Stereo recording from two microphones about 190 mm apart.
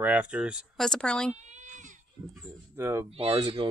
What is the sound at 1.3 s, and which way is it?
Cat, 40° right (ahead or behind).